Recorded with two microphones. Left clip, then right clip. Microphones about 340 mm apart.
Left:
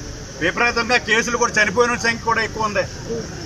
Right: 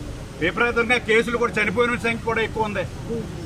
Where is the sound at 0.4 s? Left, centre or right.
Centre.